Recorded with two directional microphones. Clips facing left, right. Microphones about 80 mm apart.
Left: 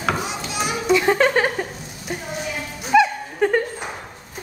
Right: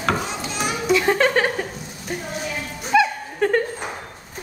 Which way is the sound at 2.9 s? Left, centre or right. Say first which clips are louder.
Left 2 dB; centre.